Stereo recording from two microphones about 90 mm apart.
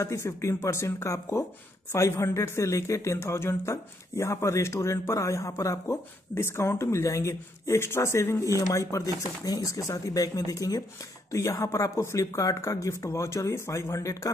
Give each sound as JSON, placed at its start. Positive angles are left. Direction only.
{"t": 0.0, "sound": "speech", "side_deg": 30}